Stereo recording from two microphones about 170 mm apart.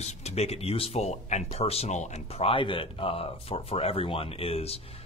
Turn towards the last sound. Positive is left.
turn(degrees=35)  # may be behind; listen again after turning